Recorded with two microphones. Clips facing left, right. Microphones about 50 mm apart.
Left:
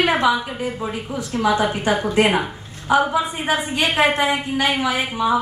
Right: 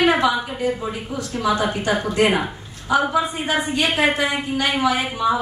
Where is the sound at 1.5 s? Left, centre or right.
Left.